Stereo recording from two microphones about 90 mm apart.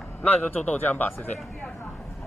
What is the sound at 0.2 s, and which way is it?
A man's voice, 20° left (ahead or behind).